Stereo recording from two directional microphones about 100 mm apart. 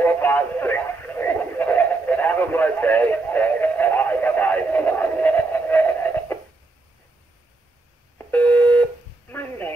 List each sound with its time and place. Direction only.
0.0 s radio: 20° left (ahead or behind)
8.2 s busy signal: 15° left (ahead or behind)
9.3 s a sound: 20° left (ahead or behind)